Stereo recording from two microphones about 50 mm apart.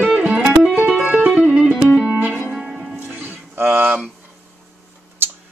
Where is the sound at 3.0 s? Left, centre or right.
Right.